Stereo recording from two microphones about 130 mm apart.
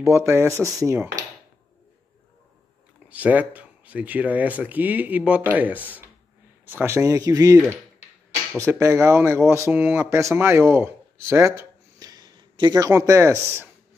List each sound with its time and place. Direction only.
0.0 s speech: 20° right (ahead or behind)
3.1 s speech: 10° right (ahead or behind); by 7.5 s 25° right (ahead or behind)
8.6 s speech: 20° right (ahead or behind)